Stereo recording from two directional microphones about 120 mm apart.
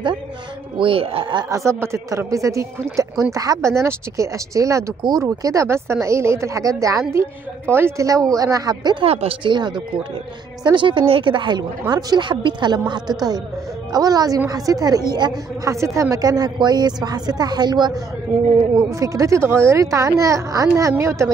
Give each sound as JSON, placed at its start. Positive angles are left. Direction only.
{"t": 0.7, "sound": "a woman's voice", "side_deg": -50}
{"t": 1.5, "sound": "a woman's voice", "side_deg": -25}
{"t": 9.0, "sound": "speech", "side_deg": -55}
{"t": 9.5, "sound": "a woman's voice", "side_deg": -40}
{"t": 13.9, "sound": "a woman's voice", "side_deg": -30}